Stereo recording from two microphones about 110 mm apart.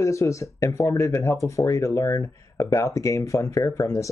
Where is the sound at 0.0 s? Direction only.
30° left (ahead or behind).